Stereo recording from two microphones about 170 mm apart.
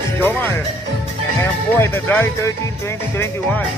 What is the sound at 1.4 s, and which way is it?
Speech, 15° left (ahead or behind).